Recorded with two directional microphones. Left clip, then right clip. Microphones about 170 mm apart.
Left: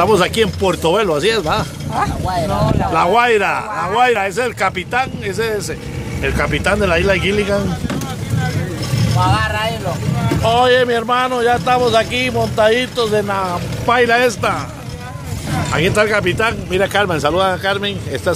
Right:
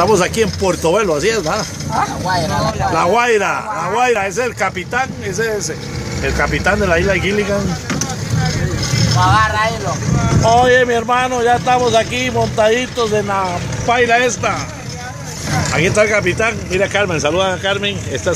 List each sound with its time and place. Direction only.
0.0 s a man's voice: centre (ahead or behind)
2.9 s a man's voice: centre (ahead or behind)
9.1 s speech: 20° left (ahead or behind)
10.4 s a man's voice: 5° left (ahead or behind)
13.8 s speech: 25° left (ahead or behind)
15.7 s speech: 5° left (ahead or behind)